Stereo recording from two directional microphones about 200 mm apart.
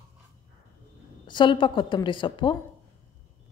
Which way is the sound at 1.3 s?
25° left (ahead or behind).